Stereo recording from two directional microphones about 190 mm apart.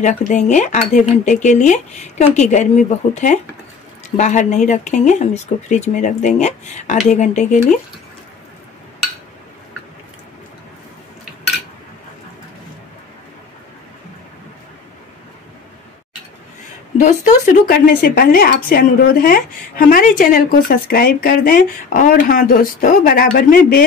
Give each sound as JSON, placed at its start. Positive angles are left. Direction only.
{"t": 0.0, "sound": "speech", "side_deg": 40}
{"t": 16.9, "sound": "speech", "side_deg": 40}